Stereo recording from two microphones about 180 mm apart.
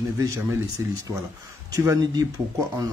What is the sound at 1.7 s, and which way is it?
Speech, 15° right (ahead or behind).